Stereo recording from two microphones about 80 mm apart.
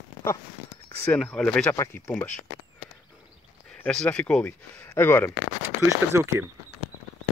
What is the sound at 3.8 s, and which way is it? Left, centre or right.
Speech, centre.